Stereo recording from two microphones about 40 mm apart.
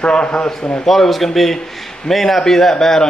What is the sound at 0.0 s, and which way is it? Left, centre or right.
Speech, left.